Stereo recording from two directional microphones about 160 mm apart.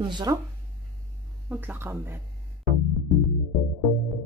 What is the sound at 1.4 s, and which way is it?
Speech, 10° right (ahead or behind).